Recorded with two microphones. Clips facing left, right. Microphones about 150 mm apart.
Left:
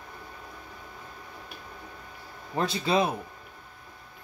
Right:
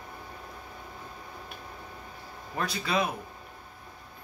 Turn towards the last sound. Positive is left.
turn(degrees=25)  # may be behind; listen again after turning